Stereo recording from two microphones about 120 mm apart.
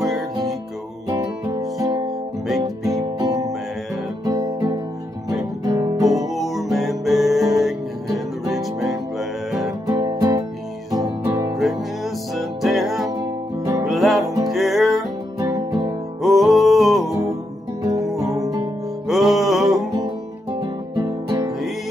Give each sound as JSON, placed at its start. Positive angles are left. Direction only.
{"t": 1.5, "sound": "music", "side_deg": -30}
{"t": 6.2, "sound": "music", "side_deg": 0}
{"t": 9.8, "sound": "music", "side_deg": -35}
{"t": 11.5, "sound": "music", "side_deg": 0}
{"t": 13.1, "sound": "music", "side_deg": -30}
{"t": 13.8, "sound": "music", "side_deg": 0}
{"t": 15.3, "sound": "music", "side_deg": -30}
{"t": 16.2, "sound": "music", "side_deg": 0}
{"t": 17.1, "sound": "music", "side_deg": -25}
{"t": 19.0, "sound": "music", "side_deg": 0}
{"t": 20.6, "sound": "music", "side_deg": -30}